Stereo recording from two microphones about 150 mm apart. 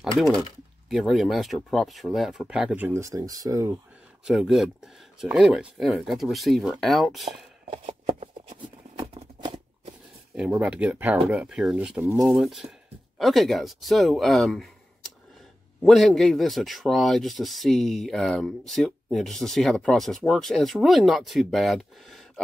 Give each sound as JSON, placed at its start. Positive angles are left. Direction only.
{"t": 0.8, "sound": "a man's voice", "side_deg": 0}
{"t": 4.3, "sound": "a man's voice", "side_deg": -5}
{"t": 7.7, "sound": "a sound", "side_deg": -40}
{"t": 10.3, "sound": "a man's voice", "side_deg": -10}
{"t": 15.8, "sound": "a man's voice", "side_deg": 0}